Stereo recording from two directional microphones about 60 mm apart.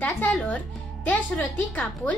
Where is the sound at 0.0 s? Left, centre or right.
Left.